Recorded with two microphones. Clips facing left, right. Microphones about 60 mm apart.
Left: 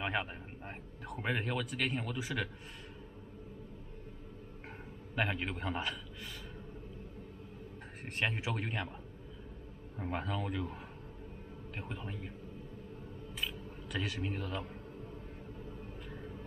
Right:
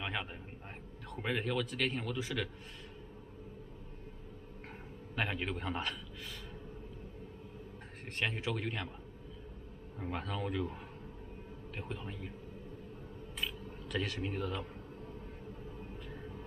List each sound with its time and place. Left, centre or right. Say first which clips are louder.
0.0 s a man's voice: left 3 dB; centre
5.1 s a man's voice: left 1 dB; centre
8.2 s speech: even; centre
9.9 s speech: left 2 dB; centre
11.8 s speech: even; centre
13.4 s a sound: even; centre